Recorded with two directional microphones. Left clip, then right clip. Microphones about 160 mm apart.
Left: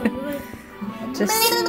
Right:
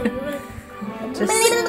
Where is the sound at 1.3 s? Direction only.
10° right (ahead or behind).